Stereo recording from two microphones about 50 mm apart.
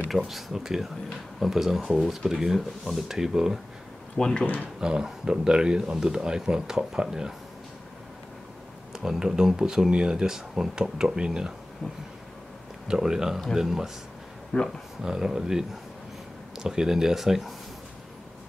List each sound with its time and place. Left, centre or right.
0.3 s speech: centre
4.2 s speech: centre
4.7 s speech: centre
8.9 s speech: centre
12.8 s speech: centre
14.5 s speech: centre
15.0 s speech: centre